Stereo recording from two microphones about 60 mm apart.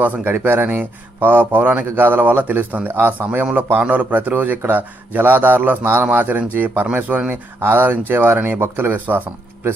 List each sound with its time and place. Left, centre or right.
0.0 s speech: right